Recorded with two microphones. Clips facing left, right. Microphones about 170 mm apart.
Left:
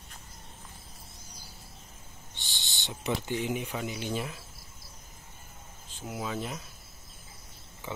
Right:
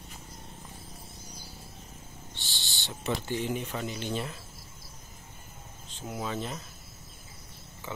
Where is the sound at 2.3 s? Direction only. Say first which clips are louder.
Even; 20° left (ahead or behind).